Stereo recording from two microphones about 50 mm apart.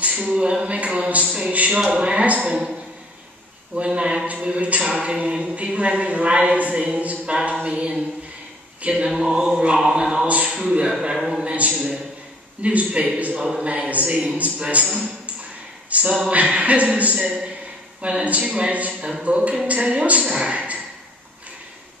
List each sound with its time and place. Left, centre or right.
0.3 s a man's voice: centre
2.5 s a man's voice: centre; by 4.9 s right
4.9 s a capella: centre
5.2 s a man's voice: right
8.8 s a capella: centre
10.2 s speech: right
10.5 s a capella: centre
11.4 s a man's voice: right
13.4 s a man's voice: centre